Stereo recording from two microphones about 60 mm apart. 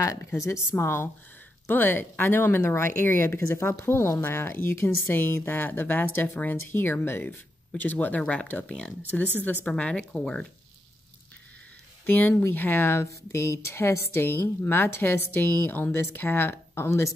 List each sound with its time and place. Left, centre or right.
0.4 s a woman's voice: left
3.4 s a woman's voice: left
9.7 s speech: centre
12.1 s a woman's voice: left
12.9 s a woman's voice: left